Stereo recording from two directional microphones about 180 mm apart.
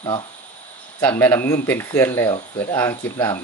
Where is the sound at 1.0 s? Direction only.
10° left (ahead or behind).